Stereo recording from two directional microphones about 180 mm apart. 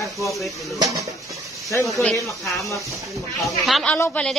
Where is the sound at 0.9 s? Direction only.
20° right (ahead or behind).